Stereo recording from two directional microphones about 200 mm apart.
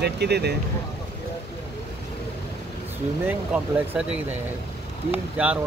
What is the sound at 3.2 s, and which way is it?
Speech, 5° right (ahead or behind).